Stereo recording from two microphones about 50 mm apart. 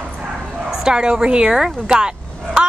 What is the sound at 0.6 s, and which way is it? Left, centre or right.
A woman's voice, centre.